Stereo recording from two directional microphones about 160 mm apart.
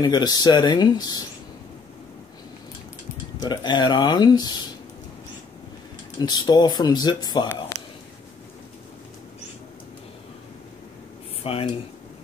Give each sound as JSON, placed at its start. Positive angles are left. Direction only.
{"t": 0.0, "sound": "speech", "side_deg": 25}
{"t": 3.4, "sound": "speech", "side_deg": 25}
{"t": 6.1, "sound": "speech", "side_deg": 25}
{"t": 11.4, "sound": "speech", "side_deg": 35}